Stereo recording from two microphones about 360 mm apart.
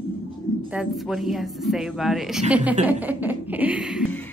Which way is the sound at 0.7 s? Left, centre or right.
Centre.